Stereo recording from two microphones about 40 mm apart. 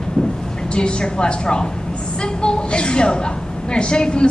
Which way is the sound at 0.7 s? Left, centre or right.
Left.